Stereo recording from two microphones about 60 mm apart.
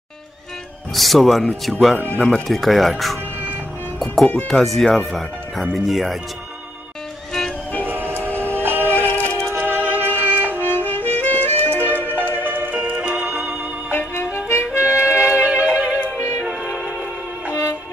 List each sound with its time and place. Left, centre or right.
0.9 s speech: centre
2.0 s speech: left
2.4 s speech: centre
4.0 s music: centre
4.5 s speech: centre
7.8 s train: right
8.5 s music: right
9.1 s music: left
9.7 s music: right
10.6 s music: left
11.8 s music: right; by 13.4 s centre
13.9 s music: left
15.0 s music: right
16.3 s music: centre